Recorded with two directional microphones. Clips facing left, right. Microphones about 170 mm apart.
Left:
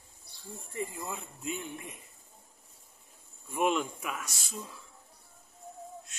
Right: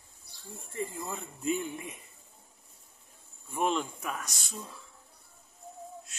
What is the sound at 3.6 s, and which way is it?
Speech, 30° right (ahead or behind).